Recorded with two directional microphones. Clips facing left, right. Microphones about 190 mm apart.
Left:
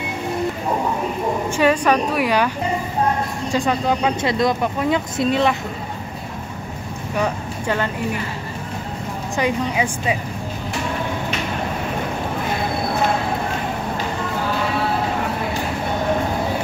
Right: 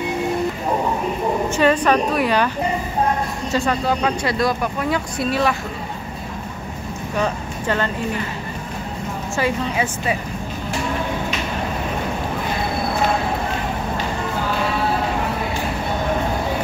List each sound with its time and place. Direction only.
1.6 s a woman's voice: 10° left (ahead or behind)
3.5 s speech: 15° left (ahead or behind)
7.2 s speech: 10° left (ahead or behind)
9.4 s a woman's voice: 15° left (ahead or behind)